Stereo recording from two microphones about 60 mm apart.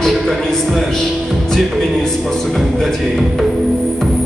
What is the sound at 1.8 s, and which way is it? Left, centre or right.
Speech, centre.